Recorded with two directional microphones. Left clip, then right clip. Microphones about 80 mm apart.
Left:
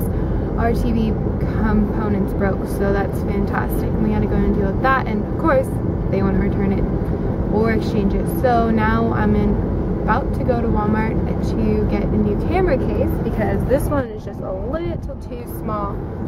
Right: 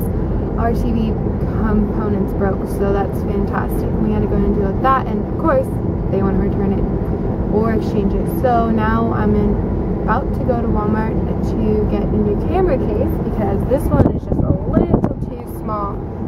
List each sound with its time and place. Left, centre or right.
0.7 s speech: centre
2.8 s speech: centre
4.8 s speech: centre
7.5 s speech: centre
12.5 s speech: centre